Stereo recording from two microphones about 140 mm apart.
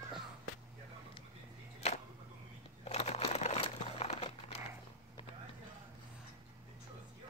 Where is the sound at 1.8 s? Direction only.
50° left (ahead or behind).